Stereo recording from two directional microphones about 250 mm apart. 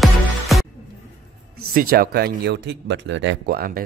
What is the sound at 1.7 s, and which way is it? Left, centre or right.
Speech, right.